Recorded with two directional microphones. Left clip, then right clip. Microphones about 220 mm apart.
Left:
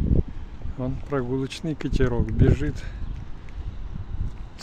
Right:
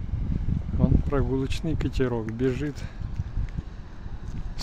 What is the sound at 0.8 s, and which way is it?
Speech, centre (ahead or behind).